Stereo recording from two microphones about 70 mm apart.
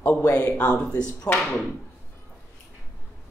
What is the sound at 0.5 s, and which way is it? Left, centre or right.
Speech, centre.